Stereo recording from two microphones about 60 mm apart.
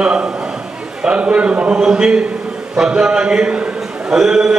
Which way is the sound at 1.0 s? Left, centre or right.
Centre.